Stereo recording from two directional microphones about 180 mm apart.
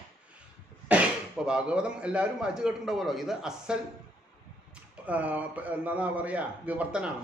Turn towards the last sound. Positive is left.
turn(degrees=-5)  # may be behind; listen again after turning